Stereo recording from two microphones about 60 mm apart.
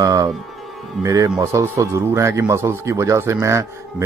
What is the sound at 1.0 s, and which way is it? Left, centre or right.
Speech, right.